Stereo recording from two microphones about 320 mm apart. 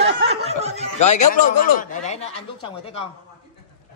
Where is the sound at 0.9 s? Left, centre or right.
Left.